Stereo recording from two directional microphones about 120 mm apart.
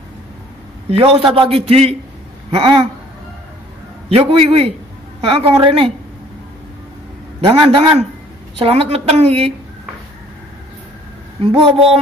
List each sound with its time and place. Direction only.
0.8 s a man's voice: 50° right (ahead or behind)
4.1 s a man's voice: 50° right (ahead or behind)
7.4 s a man's voice: 45° right (ahead or behind)
11.4 s a man's voice: 50° right (ahead or behind)